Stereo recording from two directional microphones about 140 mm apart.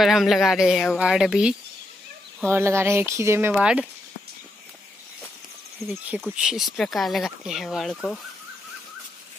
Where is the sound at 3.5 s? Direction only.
5° right (ahead or behind).